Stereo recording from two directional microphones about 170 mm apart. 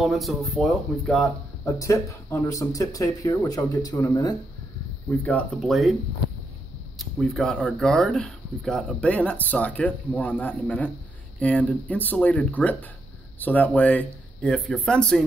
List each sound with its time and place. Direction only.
0.0 s speech: centre (ahead or behind)
1.6 s speech: 15° left (ahead or behind)
5.2 s speech: 5° left (ahead or behind)
7.0 s speech: centre (ahead or behind)